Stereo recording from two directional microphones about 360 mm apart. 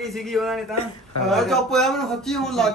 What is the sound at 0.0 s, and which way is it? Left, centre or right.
A man's voice, centre.